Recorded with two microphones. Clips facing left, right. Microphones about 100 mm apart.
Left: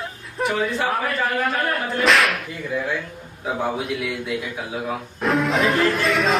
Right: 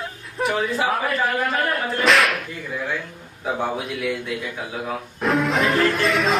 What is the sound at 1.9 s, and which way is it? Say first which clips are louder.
Music: even; centre (ahead or behind).